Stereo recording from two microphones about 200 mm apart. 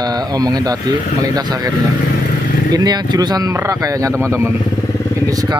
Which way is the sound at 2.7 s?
20° right (ahead or behind).